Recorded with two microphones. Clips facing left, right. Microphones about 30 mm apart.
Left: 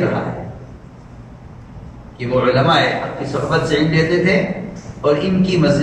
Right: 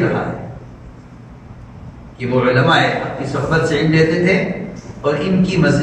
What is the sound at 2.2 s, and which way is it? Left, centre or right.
A man's voice, centre.